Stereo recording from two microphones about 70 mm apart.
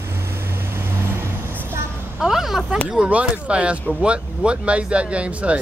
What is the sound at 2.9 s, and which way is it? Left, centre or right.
Speech, centre.